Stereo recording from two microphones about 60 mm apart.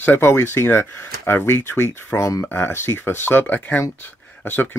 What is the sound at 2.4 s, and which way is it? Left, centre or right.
Speech, left.